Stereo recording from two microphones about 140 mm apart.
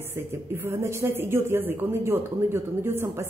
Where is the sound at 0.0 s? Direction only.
15° right (ahead or behind).